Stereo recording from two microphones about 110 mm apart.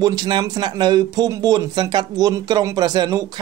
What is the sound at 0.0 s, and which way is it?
Speech, 40° right (ahead or behind).